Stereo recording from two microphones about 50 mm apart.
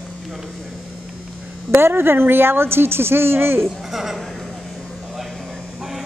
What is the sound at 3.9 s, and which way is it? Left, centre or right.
Speech, centre.